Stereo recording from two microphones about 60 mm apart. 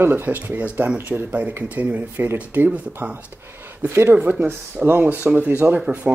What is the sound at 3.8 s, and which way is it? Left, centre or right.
Speech, right.